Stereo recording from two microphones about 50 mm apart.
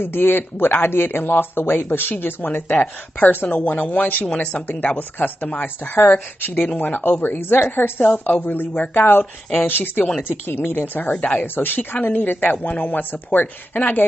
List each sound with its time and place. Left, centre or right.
0.0 s speech: left
0.8 s speech: left
8.0 s speech: left
8.4 s speech: left
11.0 s speech: left
11.4 s speech: left